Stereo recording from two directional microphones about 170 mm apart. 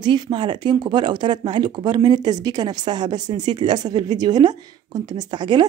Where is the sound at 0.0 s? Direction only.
25° right (ahead or behind).